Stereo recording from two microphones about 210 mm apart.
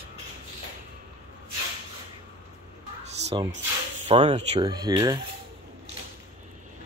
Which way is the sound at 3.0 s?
30° right (ahead or behind).